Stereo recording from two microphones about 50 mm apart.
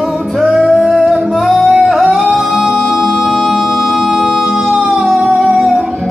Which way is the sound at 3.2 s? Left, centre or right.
Centre.